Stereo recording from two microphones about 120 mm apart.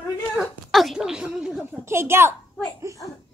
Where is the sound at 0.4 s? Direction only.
Centre (ahead or behind).